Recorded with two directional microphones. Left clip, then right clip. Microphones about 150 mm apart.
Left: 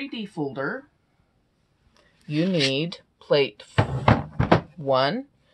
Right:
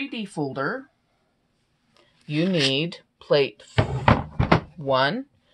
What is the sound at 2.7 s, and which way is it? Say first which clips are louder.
Speech: right 2 dB; 5° right (ahead or behind).